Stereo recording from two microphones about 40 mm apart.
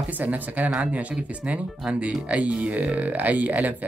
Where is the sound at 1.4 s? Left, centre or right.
Right.